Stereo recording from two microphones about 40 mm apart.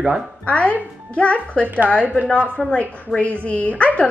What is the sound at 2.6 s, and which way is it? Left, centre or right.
Speech, centre.